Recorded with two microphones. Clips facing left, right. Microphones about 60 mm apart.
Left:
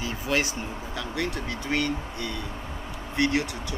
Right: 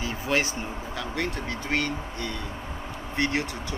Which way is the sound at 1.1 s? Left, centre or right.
Right.